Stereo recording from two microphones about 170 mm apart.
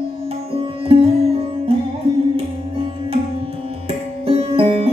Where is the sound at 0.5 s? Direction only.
30° right (ahead or behind).